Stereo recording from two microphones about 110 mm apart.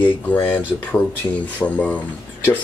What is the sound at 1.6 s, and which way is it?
Speech, 15° left (ahead or behind).